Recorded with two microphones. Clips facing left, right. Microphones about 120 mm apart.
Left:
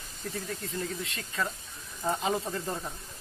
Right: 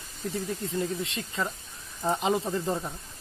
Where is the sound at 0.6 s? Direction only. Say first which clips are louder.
Right 5 dB; 25° right (ahead or behind).